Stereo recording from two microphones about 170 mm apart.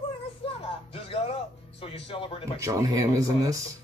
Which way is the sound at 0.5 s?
35° left (ahead or behind).